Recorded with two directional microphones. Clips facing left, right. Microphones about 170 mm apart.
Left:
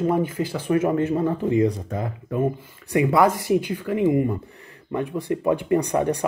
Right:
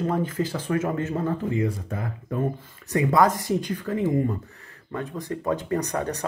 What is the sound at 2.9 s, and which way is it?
Speech, 10° left (ahead or behind).